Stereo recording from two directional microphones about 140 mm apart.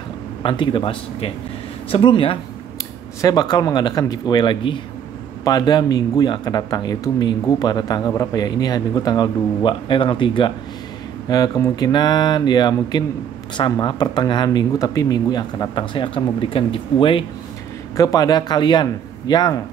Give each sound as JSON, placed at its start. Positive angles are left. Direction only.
{"t": 0.4, "sound": "speech", "side_deg": 35}
{"t": 3.2, "sound": "speech", "side_deg": 25}
{"t": 17.9, "sound": "speech", "side_deg": 25}